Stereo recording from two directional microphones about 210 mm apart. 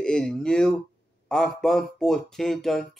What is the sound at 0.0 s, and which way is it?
Speech, 5° left (ahead or behind).